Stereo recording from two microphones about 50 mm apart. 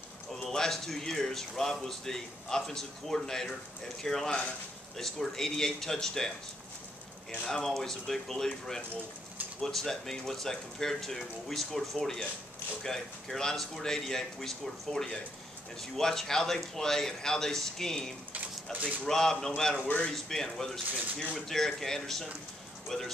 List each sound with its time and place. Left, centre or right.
0.4 s a man's voice: centre
18.3 s a sound: right
19.0 s speech: centre